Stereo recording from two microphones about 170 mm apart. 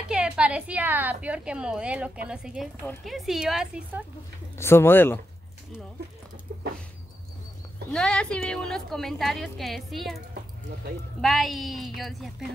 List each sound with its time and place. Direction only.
0.1 s a woman's voice: 5° right (ahead or behind)
4.6 s speech: 15° left (ahead or behind)
6.5 s a sound: 70° right (ahead or behind)
7.9 s a woman's voice: 5° left (ahead or behind)